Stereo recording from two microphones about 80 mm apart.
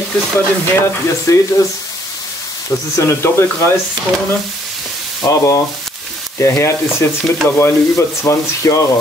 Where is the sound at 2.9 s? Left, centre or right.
Left.